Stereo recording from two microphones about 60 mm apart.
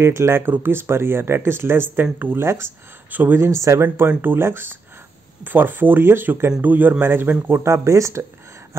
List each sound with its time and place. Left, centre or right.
0.0 s speech: right
3.1 s speech: right
3.3 s speech: right
3.8 s speech: right